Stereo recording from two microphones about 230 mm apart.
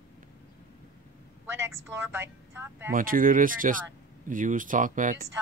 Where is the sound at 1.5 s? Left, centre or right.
Centre.